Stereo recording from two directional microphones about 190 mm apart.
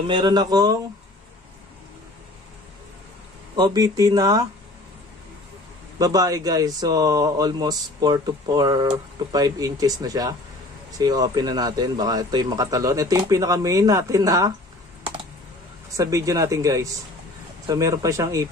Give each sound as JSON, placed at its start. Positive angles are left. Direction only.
{"t": 0.1, "sound": "a man's voice", "side_deg": -20}
{"t": 3.5, "sound": "a man's voice", "side_deg": -20}
{"t": 5.9, "sound": "a man's voice", "side_deg": -20}
{"t": 16.0, "sound": "speech", "side_deg": -15}